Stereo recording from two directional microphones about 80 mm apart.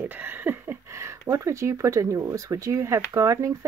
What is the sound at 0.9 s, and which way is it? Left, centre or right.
Speech, right.